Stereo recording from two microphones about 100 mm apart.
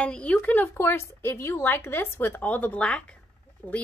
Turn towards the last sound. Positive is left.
turn(degrees=15)  # may be behind; listen again after turning